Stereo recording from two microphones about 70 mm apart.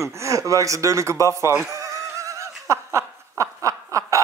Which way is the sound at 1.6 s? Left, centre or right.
Right.